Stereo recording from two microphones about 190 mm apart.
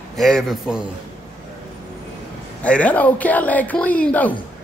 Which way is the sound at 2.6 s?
5° left (ahead or behind).